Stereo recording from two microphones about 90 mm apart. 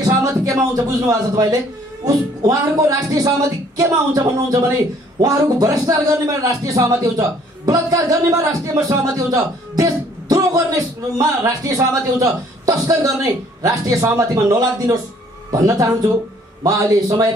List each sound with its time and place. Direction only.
0.0 s a man's voice: 40° right (ahead or behind)